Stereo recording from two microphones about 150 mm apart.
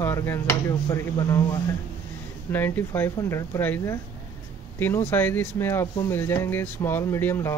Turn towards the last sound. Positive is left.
turn(degrees=15)  # may be behind; listen again after turning